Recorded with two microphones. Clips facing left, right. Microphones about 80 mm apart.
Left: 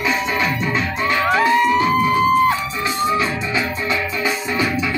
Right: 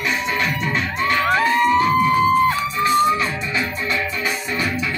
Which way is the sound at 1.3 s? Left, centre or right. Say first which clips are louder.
Left 1 dB; centre.